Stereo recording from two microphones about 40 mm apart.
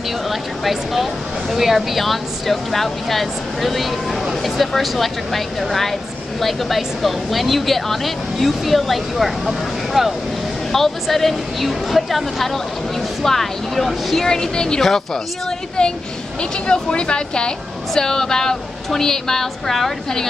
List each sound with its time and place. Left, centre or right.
0.3 s speech: centre
10.7 s a woman's voice: centre
15.8 s a woman's voice: centre
17.9 s a woman's voice: centre